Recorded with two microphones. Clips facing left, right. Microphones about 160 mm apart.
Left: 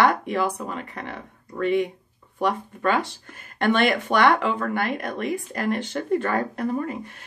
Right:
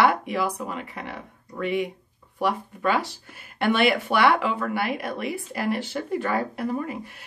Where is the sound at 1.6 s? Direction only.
10° right (ahead or behind).